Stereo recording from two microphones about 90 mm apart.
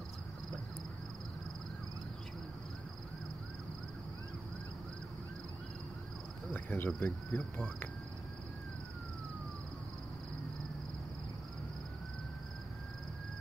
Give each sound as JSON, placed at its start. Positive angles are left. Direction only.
{"t": 6.5, "sound": "speech", "side_deg": 20}
{"t": 7.0, "sound": "cricket", "side_deg": 15}